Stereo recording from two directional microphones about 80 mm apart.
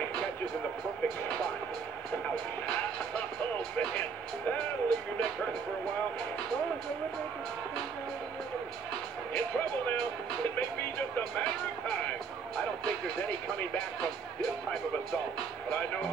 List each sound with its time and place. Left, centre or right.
1.0 s speech: centre
4.8 s speech: centre
10.5 s speech: centre
11.4 s speech: centre